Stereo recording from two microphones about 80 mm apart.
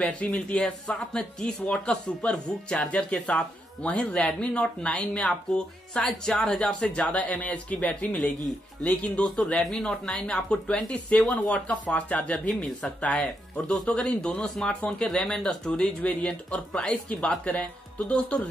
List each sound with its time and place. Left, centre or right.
0.0 s speech: centre